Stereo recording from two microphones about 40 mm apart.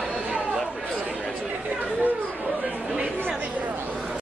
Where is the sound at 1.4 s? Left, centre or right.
Right.